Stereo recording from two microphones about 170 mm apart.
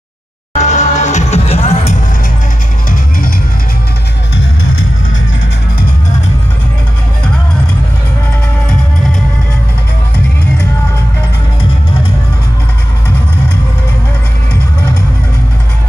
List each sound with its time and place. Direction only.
0.6 s music: 45° left (ahead or behind)